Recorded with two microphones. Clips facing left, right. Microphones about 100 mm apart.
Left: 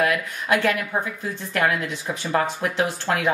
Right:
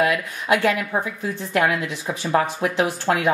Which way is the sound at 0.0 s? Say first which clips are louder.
Right 1 dB; 15° right (ahead or behind).